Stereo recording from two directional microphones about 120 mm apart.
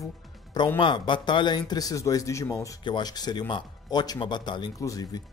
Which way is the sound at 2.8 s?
40° left (ahead or behind).